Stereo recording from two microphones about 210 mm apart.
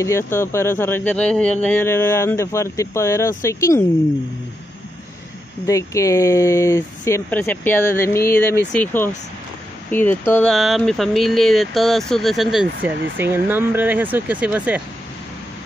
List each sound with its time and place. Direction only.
0.0 s speech: 10° left (ahead or behind)
5.7 s speech: 15° left (ahead or behind); by 14.8 s 5° right (ahead or behind)